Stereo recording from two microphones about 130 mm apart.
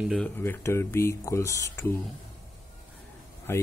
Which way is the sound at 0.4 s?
20° left (ahead or behind).